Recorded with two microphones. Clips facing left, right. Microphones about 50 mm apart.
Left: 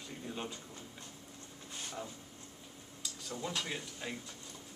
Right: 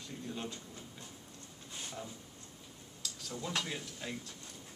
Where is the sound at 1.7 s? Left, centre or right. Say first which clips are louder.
Left 1 dB; centre.